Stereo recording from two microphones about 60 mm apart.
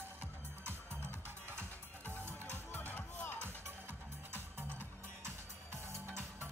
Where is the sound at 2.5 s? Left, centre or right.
Left.